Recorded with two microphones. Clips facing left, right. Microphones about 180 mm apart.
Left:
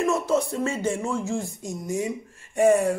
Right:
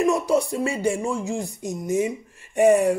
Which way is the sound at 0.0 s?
15° right (ahead or behind).